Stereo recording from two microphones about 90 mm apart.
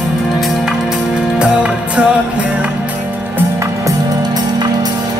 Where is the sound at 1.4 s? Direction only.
10° right (ahead or behind).